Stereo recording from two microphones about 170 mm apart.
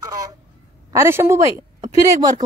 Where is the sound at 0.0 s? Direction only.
20° right (ahead or behind).